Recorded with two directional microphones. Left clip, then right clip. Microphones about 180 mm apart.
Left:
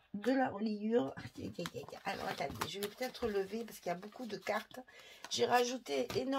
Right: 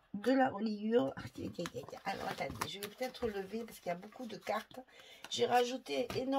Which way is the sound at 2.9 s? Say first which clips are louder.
Left 1 dB; 35° left (ahead or behind).